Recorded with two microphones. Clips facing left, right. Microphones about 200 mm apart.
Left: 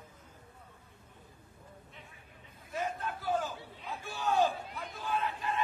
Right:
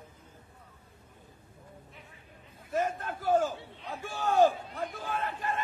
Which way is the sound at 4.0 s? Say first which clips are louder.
Right 5 dB; 50° right (ahead or behind).